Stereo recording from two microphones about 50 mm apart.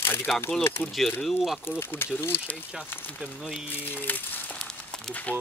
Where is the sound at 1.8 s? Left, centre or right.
Left.